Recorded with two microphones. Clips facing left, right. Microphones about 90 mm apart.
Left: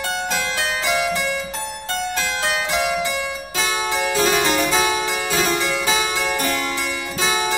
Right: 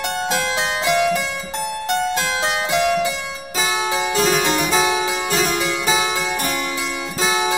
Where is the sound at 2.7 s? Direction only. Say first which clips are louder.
Right 5 dB; centre (ahead or behind).